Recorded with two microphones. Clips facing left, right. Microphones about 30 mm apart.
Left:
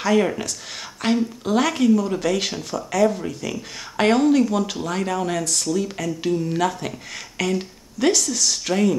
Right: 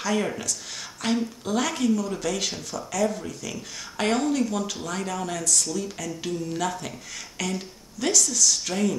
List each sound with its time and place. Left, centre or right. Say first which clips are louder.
0.1 s speech: left 7 dB; left